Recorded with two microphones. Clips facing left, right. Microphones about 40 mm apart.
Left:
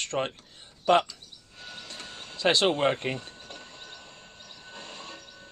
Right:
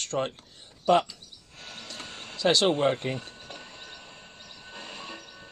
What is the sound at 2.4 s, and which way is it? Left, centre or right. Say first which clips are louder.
Speech: even; left.